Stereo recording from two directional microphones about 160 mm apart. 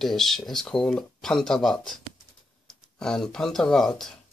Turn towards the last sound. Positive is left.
turn(degrees=0)  # may be behind; listen again after turning